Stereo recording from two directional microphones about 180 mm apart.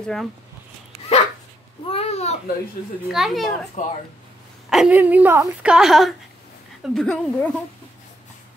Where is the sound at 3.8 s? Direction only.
45° left (ahead or behind).